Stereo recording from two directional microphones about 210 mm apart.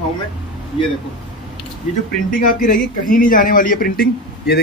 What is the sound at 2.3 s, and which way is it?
Speech, 40° left (ahead or behind).